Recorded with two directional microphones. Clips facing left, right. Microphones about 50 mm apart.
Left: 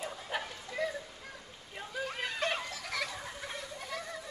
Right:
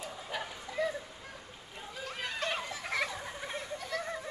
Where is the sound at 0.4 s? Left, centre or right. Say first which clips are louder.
Right 3 dB; centre.